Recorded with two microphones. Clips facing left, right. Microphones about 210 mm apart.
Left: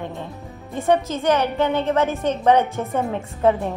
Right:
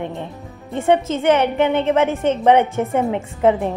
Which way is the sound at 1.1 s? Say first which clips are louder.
Right 4 dB; 25° right (ahead or behind).